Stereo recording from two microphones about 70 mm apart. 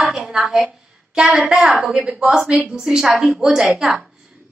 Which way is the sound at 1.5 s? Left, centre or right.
Centre.